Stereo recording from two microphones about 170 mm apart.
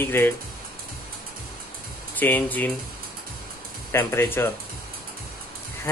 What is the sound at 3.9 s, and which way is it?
Speech, 15° left (ahead or behind).